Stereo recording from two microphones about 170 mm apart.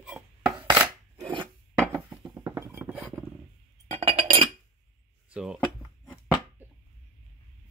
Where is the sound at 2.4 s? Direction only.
15° right (ahead or behind).